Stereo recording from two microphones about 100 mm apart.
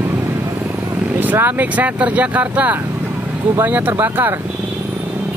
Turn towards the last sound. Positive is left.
turn(degrees=-20)  # may be behind; listen again after turning